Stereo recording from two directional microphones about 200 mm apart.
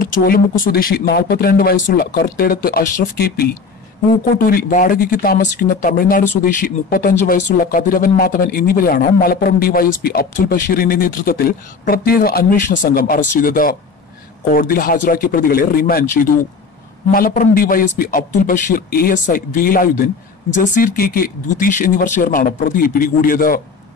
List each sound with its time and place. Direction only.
0.0 s speech: 45° left (ahead or behind)